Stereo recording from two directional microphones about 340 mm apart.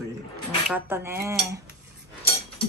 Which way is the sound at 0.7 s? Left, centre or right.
Centre.